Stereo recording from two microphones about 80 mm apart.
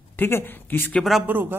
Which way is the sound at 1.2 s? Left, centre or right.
Right.